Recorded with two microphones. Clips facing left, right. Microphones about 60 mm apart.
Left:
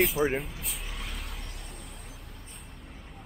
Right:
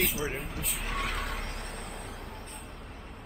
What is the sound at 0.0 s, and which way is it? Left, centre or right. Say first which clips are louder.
Speech: left 6 dB; centre.